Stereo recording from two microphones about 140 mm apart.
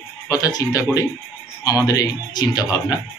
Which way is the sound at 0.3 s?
25° left (ahead or behind).